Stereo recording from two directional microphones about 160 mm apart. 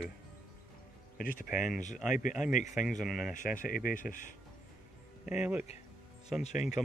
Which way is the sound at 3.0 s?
Centre (ahead or behind).